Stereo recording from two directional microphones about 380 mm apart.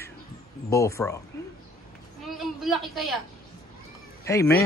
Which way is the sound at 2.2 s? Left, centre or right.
Centre.